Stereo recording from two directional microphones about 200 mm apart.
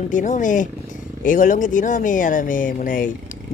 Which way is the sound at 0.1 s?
40° left (ahead or behind).